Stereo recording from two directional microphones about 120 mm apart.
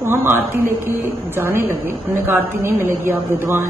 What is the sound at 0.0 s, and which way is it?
A woman's voice, 20° right (ahead or behind).